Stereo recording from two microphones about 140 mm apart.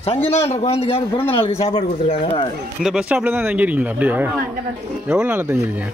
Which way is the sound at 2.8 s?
5° right (ahead or behind).